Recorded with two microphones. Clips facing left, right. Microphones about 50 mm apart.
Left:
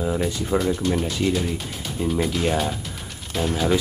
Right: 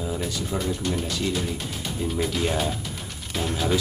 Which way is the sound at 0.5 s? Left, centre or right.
Left.